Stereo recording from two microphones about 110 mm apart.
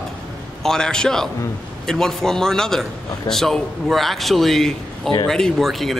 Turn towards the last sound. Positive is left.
turn(degrees=0)  # may be behind; listen again after turning